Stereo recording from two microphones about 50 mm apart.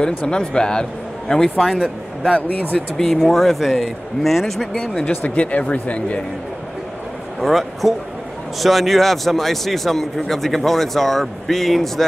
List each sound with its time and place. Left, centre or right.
0.0 s speech: centre
1.7 s a man's voice: centre
4.7 s speech: left
7.3 s a man's voice: centre